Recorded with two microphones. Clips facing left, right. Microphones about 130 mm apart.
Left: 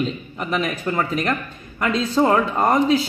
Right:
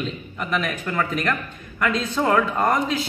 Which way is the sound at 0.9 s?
25° left (ahead or behind).